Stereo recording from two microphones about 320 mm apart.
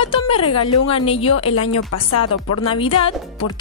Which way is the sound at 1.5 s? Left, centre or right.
Left.